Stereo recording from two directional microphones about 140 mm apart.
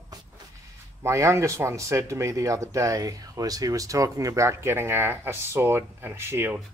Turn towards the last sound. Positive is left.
turn(degrees=-15)  # may be behind; listen again after turning